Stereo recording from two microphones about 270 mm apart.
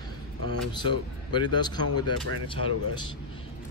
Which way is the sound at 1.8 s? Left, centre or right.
Left.